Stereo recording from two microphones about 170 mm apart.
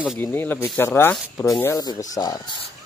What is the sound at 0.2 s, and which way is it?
Speech, 10° left (ahead or behind).